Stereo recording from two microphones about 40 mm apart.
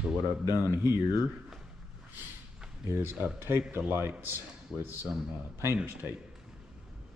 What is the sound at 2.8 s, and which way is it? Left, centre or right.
Speech, right.